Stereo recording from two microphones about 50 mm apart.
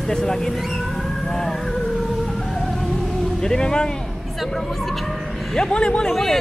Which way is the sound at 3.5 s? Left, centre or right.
Centre.